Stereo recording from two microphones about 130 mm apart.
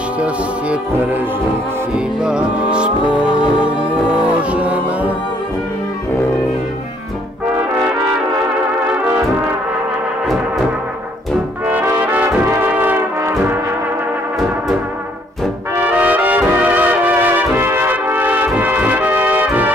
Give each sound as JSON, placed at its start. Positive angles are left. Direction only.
{"t": 0.2, "sound": "music", "side_deg": -10}
{"t": 4.4, "sound": "music", "side_deg": -10}
{"t": 11.6, "sound": "brass instrument", "side_deg": -15}
{"t": 15.8, "sound": "music", "side_deg": -10}